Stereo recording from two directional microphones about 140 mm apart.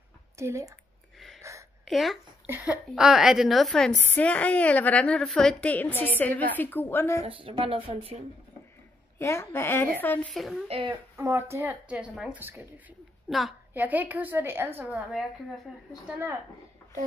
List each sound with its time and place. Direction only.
0.4 s speech: 20° right (ahead or behind)
1.1 s a sound: centre (ahead or behind)
1.4 s a sound: 20° right (ahead or behind)
1.9 s a woman's voice: centre (ahead or behind)
2.4 s a woman's voice: 10° right (ahead or behind); by 7.2 s 15° left (ahead or behind)
7.2 s speech: 40° right (ahead or behind)
9.2 s a woman's voice: 20° left (ahead or behind)
10.3 s a woman's voice: centre (ahead or behind)
10.7 s speech: 40° right (ahead or behind)
11.1 s speech: 20° right (ahead or behind)
13.3 s a woman's voice: centre (ahead or behind)
13.7 s speech: 10° right (ahead or behind)
16.1 s speech: 20° right (ahead or behind)